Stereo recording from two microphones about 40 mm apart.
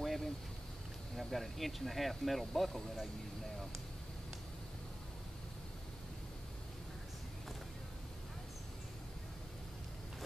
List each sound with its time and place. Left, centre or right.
0.0 s vehicle: centre
1.1 s speech: centre